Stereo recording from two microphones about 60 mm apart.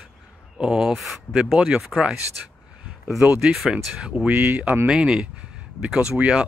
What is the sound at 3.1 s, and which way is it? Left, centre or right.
Speech, right.